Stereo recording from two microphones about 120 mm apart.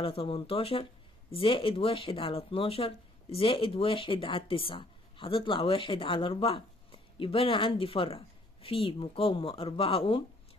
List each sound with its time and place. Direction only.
0.0 s speech: 50° left (ahead or behind)